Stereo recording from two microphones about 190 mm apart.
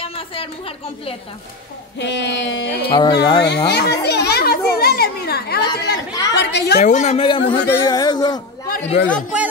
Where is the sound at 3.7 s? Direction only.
60° left (ahead or behind).